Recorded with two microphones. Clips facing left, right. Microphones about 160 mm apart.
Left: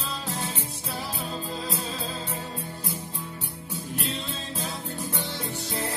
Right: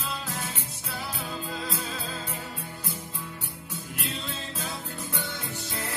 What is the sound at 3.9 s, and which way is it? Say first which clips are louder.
Music: left 3 dB; 30° left (ahead or behind).